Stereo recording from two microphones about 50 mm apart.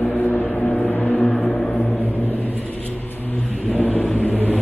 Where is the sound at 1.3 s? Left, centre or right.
Centre.